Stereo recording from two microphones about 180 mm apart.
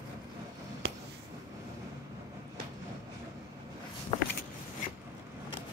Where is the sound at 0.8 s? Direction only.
70° right (ahead or behind).